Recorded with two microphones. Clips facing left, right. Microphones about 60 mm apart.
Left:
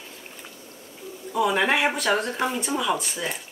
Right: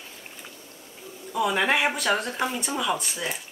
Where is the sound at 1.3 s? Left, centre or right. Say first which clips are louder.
Left 2 dB; centre.